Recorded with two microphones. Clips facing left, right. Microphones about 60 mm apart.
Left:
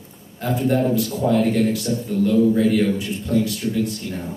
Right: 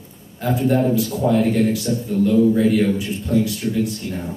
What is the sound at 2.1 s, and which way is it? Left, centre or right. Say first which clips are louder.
Speech: right 2 dB; right.